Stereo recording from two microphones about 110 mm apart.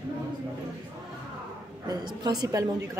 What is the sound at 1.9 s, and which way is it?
A woman's voice, 40° right (ahead or behind).